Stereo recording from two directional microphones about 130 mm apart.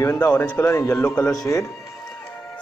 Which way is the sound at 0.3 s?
15° left (ahead or behind).